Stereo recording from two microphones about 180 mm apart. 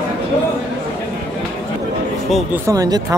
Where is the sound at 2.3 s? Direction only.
10° right (ahead or behind).